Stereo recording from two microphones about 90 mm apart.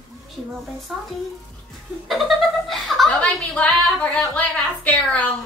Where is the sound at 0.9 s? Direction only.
5° right (ahead or behind).